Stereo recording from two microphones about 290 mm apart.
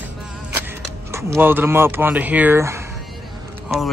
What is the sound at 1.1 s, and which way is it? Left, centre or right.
Speech, centre.